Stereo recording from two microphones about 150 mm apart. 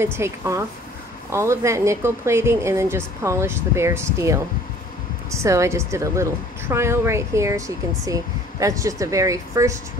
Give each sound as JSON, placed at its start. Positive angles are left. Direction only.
{"t": 0.0, "sound": "a woman's voice", "side_deg": -15}